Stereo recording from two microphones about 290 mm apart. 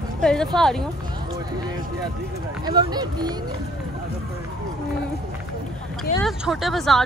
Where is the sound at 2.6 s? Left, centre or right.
Centre.